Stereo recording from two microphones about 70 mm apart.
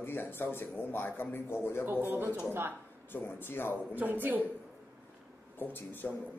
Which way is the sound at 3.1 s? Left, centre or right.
Left.